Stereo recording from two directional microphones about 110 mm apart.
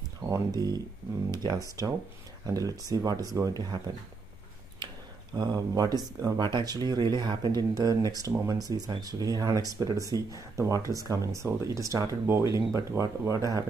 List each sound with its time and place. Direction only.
0.3 s speech: 35° right (ahead or behind)
5.3 s speech: 40° right (ahead or behind)